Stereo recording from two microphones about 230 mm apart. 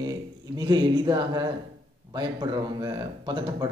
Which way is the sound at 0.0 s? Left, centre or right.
Centre.